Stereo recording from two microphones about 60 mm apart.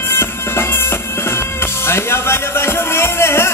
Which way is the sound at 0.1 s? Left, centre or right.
Left.